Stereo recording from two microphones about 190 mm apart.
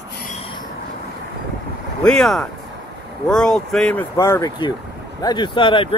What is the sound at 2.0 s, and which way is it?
Speech, 5° left (ahead or behind).